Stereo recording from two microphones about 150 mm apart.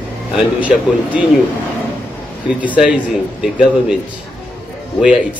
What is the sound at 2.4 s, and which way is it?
A man's voice, 10° right (ahead or behind).